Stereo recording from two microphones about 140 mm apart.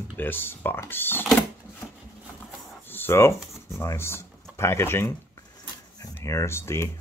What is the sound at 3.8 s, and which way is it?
Speech, 15° left (ahead or behind).